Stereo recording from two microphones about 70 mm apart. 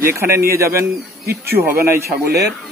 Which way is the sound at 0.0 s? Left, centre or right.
Right.